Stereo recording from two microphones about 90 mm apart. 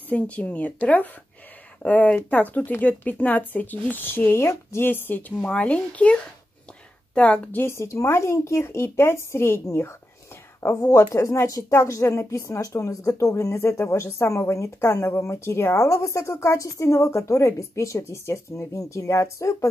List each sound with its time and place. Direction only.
0.1 s speech: 15° left (ahead or behind)
5.4 s speech: 15° left (ahead or behind)
7.6 s a woman's voice: 30° left (ahead or behind)